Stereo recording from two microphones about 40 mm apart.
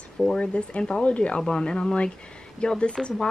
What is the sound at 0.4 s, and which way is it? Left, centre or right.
Speech, left.